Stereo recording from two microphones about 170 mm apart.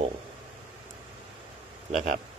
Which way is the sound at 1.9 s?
45° right (ahead or behind).